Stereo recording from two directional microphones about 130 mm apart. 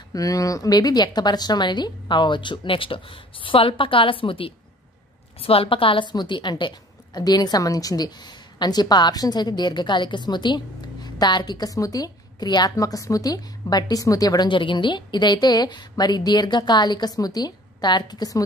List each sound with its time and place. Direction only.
0.1 s a woman's voice: 25° left (ahead or behind)